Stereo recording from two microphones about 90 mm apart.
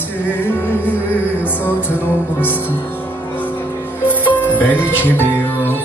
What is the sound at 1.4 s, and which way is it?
Music, 25° left (ahead or behind).